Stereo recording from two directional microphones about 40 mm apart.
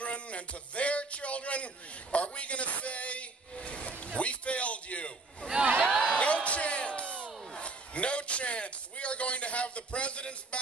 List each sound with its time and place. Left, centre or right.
0.0 s speech: left
6.0 s a sound: left
7.5 s a man's voice: left